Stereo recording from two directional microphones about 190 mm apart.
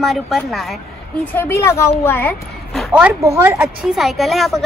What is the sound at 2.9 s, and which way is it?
A woman's voice, 5° right (ahead or behind).